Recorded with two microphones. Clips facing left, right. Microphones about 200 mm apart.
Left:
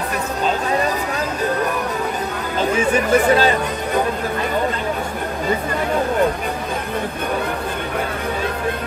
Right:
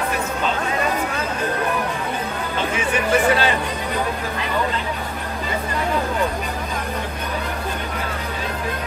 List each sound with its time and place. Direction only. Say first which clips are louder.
2.8 s speech: left 3 dB; 40° left (ahead or behind)